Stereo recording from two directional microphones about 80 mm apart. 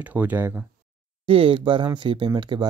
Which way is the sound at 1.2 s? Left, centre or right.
Right.